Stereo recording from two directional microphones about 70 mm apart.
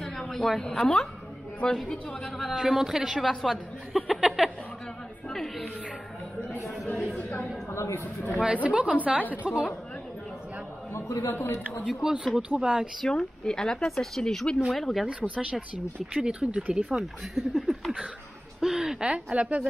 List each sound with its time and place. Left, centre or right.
0.0 s a man's voice: centre
2.2 s speech: centre
5.3 s a woman's voice: centre
6.8 s speech: centre
7.7 s speech: left
8.0 s speech: left
8.6 s a woman's voice: centre
10.9 s a sound: left
11.2 s a man's voice: left
11.9 s speech: centre
13.0 s speech: centre
15.0 s speech: centre
17.4 s speech: centre